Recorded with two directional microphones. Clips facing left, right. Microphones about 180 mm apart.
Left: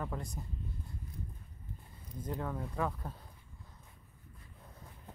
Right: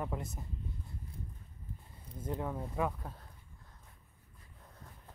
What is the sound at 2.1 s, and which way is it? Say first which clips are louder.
Speech: right 1 dB; 25° right (ahead or behind).